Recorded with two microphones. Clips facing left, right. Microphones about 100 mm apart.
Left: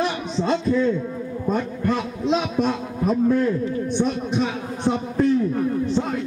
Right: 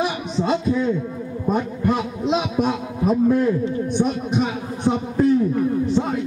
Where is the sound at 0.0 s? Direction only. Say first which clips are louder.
Right 1 dB; 10° right (ahead or behind).